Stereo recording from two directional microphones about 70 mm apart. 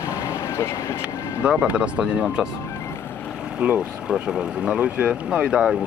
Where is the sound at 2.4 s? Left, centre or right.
Centre.